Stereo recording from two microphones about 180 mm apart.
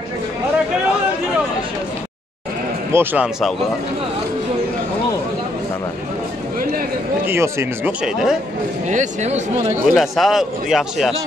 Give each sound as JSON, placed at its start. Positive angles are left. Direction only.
{"t": 2.9, "sound": "speech", "side_deg": -10}
{"t": 7.2, "sound": "speech", "side_deg": -15}
{"t": 8.0, "sound": "speech", "side_deg": -5}
{"t": 8.8, "sound": "speech", "side_deg": -40}
{"t": 9.8, "sound": "speech", "side_deg": 0}